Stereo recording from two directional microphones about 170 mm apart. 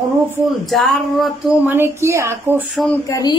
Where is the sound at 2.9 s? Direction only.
20° left (ahead or behind).